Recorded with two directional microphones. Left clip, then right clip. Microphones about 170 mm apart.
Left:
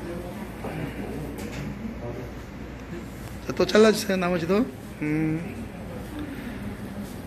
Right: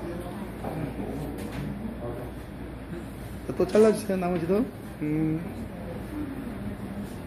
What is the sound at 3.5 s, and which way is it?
A man's voice, 5° left (ahead or behind).